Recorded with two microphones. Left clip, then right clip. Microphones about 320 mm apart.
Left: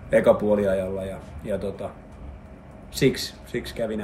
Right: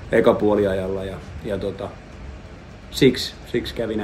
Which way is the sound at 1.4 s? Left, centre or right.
Centre.